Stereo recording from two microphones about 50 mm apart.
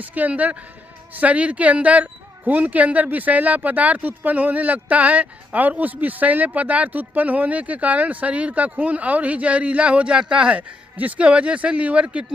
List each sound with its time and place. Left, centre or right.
0.0 s a woman's voice: right